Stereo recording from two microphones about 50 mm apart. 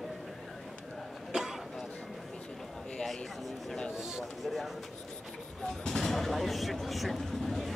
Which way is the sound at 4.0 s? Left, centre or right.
Centre.